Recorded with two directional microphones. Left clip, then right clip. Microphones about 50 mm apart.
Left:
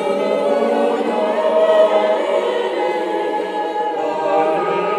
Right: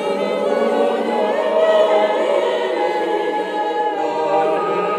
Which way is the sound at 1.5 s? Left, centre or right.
Centre.